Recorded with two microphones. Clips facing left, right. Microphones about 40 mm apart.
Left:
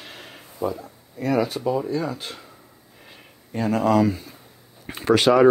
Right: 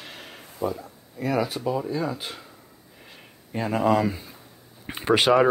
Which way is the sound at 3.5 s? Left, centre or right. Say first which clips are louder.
Left 2 dB; centre.